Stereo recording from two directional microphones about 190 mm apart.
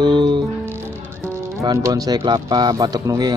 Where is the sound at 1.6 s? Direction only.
20° right (ahead or behind).